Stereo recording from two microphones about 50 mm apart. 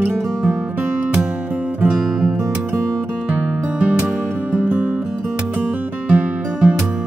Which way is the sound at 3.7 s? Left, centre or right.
Right.